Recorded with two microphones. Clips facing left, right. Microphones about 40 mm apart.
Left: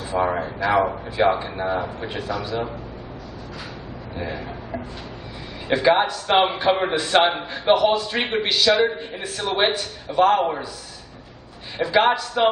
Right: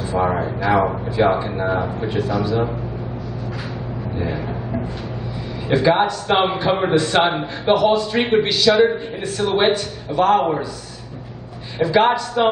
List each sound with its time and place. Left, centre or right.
0.1 s a man's voice: centre
4.2 s a man's voice: centre
11.8 s a man's voice: centre